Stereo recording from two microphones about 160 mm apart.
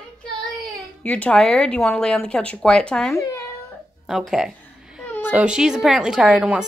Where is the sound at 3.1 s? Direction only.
20° left (ahead or behind).